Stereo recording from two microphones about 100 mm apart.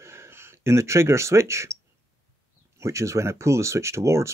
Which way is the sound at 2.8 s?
30° right (ahead or behind).